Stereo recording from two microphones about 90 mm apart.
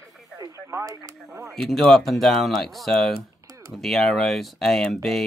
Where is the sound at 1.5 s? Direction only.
5° left (ahead or behind).